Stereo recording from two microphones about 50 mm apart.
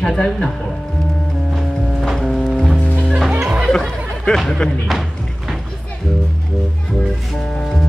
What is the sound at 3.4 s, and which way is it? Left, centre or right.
Music, right.